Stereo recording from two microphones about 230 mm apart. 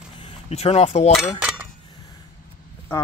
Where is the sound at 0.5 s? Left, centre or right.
Left.